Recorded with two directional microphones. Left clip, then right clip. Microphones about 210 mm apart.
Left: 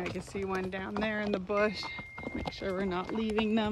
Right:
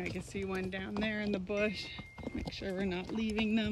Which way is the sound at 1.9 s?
25° left (ahead or behind).